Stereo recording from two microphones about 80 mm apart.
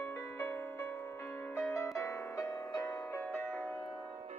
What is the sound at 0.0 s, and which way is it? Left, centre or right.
Music, left.